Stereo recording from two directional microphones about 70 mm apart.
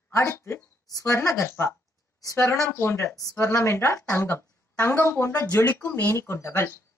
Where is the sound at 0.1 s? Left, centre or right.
Left.